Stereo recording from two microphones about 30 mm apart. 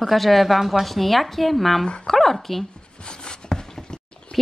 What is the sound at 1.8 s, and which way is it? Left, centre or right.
Speech, left.